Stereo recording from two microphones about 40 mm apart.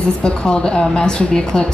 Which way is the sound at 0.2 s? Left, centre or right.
Left.